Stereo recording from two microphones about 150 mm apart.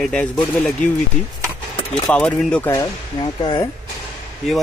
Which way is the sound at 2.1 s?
5° left (ahead or behind).